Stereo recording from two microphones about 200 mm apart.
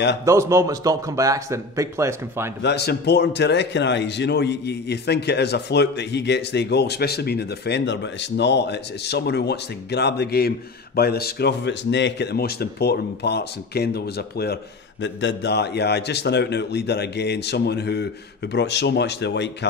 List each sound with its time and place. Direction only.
0.2 s a man's voice: 15° right (ahead or behind)
2.6 s a man's voice: 55° left (ahead or behind)